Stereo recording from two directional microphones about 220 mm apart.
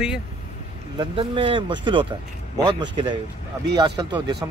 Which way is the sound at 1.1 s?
25° right (ahead or behind).